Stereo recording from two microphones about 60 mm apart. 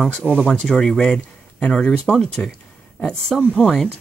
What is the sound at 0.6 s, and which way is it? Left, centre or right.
Speech, centre.